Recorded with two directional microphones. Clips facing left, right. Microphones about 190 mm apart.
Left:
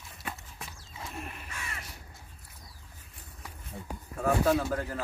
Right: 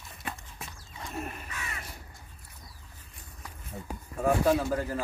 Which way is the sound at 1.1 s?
40° right (ahead or behind).